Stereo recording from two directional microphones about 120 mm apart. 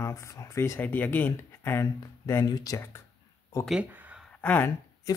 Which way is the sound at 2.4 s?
30° left (ahead or behind).